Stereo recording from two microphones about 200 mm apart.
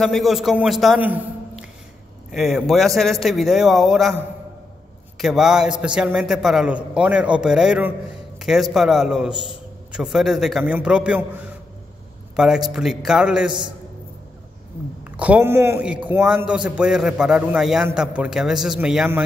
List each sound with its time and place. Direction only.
0.0 s a man's voice: centre (ahead or behind)
5.2 s a man's voice: centre (ahead or behind)
8.4 s a sound: centre (ahead or behind)
8.7 s a man's voice: centre (ahead or behind)
15.0 s a man's voice: 5° right (ahead or behind)